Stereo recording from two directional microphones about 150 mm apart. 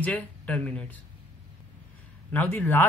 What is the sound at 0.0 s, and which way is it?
Speech, 10° left (ahead or behind).